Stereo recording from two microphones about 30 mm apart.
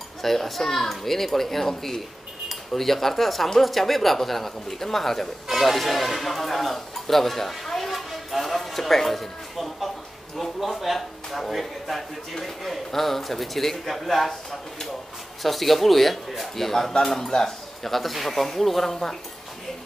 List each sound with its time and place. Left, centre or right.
0.2 s a child's voice: centre
5.5 s speech: centre
10.3 s a sound: centre
11.0 s speech: centre
15.4 s speech: centre
17.2 s speech: left
17.8 s a child's voice: centre